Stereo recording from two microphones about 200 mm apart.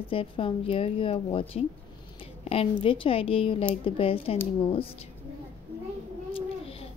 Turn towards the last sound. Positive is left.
turn(degrees=30)  # may be behind; listen again after turning